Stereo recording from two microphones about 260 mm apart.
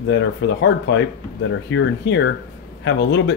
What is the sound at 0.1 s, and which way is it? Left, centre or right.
Speech, left.